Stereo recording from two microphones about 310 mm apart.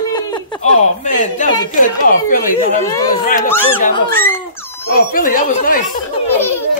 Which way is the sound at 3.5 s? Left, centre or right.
Centre.